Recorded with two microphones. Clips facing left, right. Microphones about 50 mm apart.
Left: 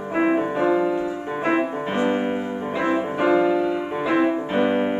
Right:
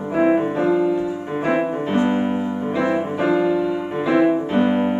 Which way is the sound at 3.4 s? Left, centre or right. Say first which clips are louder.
Right 1 dB; centre.